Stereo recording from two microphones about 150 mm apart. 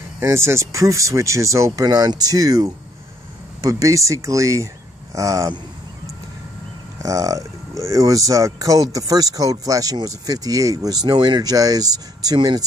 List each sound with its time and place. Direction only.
0.2 s speech: 20° right (ahead or behind)
7.0 s speech: 20° right (ahead or behind)